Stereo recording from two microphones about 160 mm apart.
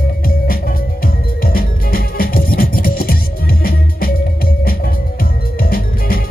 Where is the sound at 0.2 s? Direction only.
65° left (ahead or behind).